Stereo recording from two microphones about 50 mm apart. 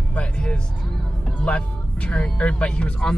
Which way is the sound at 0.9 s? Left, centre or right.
Centre.